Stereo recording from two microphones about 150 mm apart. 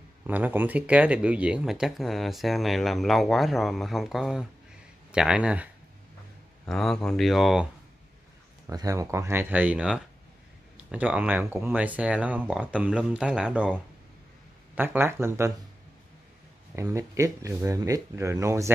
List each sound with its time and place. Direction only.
0.3 s speech: 10° right (ahead or behind)
6.6 s speech: 5° left (ahead or behind)
8.6 s speech: 20° right (ahead or behind)
14.8 s speech: 15° right (ahead or behind)
16.7 s speech: 20° right (ahead or behind)